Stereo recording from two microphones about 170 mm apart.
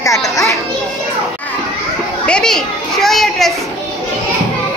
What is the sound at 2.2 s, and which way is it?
Children playing, 5° left (ahead or behind).